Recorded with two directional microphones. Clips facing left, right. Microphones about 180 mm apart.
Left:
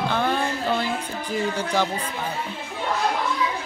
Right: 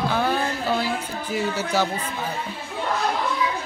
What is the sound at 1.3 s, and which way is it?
Speech, 5° right (ahead or behind).